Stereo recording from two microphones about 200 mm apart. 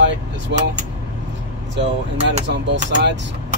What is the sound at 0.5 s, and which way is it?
Speech, 60° right (ahead or behind).